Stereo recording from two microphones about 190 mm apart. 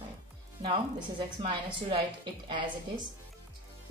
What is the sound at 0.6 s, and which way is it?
A woman's voice, 30° right (ahead or behind).